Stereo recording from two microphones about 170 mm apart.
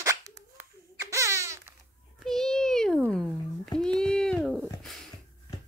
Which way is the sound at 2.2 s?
Centre (ahead or behind).